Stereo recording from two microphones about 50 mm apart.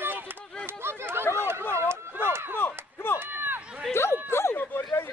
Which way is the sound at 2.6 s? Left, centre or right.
Left.